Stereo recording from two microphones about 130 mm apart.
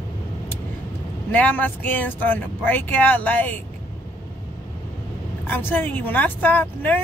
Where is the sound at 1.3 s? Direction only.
10° left (ahead or behind).